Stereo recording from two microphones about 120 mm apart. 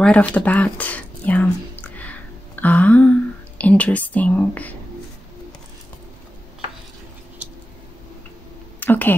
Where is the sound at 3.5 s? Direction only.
10° left (ahead or behind).